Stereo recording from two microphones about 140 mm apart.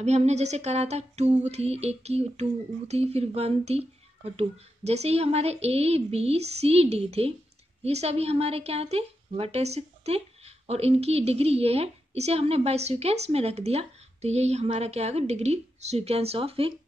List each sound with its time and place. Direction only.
0.0 s a woman's voice: 50° right (ahead or behind)